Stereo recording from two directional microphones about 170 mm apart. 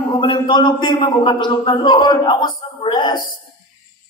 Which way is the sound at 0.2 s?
30° left (ahead or behind).